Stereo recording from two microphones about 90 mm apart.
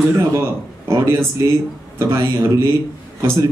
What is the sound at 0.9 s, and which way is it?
A man's voice, 35° right (ahead or behind).